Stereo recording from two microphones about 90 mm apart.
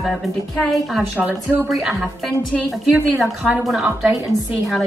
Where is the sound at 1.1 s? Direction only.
15° right (ahead or behind).